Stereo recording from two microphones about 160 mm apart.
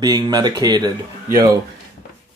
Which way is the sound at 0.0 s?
25° right (ahead or behind).